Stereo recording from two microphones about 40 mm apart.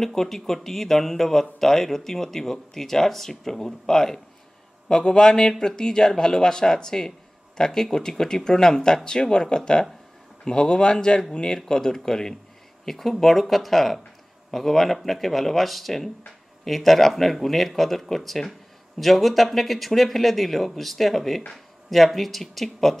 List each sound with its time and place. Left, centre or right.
0.0 s speech: centre